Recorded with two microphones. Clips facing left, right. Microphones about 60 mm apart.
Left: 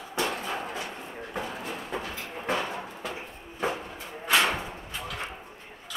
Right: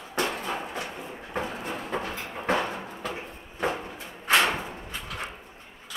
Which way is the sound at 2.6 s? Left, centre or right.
Centre.